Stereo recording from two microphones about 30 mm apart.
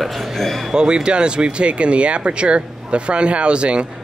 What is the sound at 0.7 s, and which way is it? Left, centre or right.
Speech, right.